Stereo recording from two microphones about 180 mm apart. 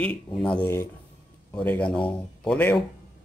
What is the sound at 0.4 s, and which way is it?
Speech, 5° left (ahead or behind).